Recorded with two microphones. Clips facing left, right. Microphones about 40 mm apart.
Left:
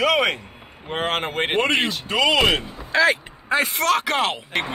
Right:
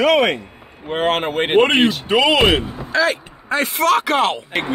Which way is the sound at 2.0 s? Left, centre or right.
Centre.